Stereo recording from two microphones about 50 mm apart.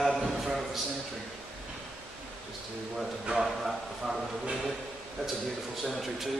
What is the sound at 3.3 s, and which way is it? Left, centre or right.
Speech, centre.